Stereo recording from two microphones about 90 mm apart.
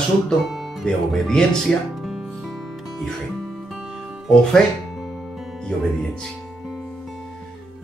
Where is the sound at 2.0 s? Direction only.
5° right (ahead or behind).